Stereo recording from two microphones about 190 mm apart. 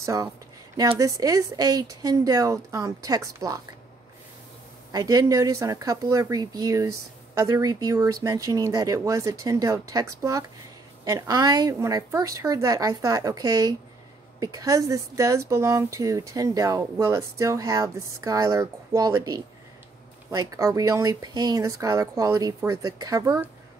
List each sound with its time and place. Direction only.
0.0 s speech: 15° right (ahead or behind)
4.9 s speech: 20° right (ahead or behind)